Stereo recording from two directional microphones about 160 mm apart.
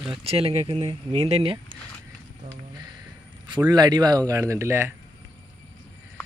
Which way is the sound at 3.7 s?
25° right (ahead or behind).